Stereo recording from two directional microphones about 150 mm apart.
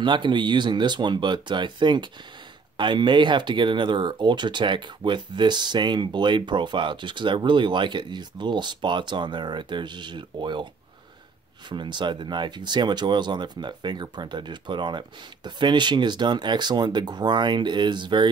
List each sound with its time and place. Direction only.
0.0 s speech: 30° right (ahead or behind)
11.7 s speech: 30° right (ahead or behind)